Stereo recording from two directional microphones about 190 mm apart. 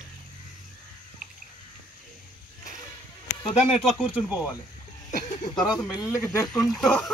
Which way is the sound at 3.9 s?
Centre (ahead or behind).